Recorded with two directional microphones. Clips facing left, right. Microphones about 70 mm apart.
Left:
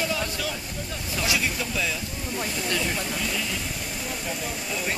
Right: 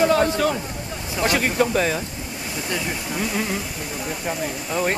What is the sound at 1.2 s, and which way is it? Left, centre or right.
Speech, right.